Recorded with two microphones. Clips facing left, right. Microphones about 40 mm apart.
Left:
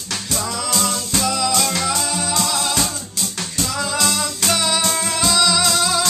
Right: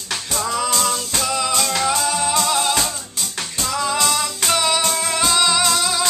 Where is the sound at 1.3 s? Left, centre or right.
Right.